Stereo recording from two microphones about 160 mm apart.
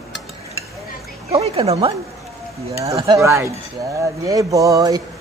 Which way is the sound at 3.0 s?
20° right (ahead or behind).